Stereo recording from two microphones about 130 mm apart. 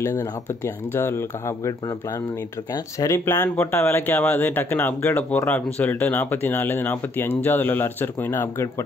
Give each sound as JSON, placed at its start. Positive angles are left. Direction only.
{"t": 0.0, "sound": "speech", "side_deg": 20}